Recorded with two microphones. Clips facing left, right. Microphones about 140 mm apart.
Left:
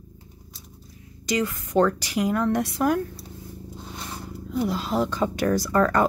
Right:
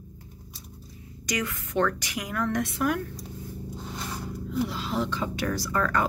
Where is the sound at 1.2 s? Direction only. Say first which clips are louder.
Left 5 dB; 30° left (ahead or behind).